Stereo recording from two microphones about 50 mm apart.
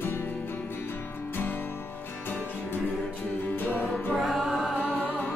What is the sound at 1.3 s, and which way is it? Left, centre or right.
Music, left.